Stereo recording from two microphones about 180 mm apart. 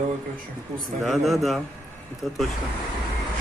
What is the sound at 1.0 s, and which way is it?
Speech, centre (ahead or behind).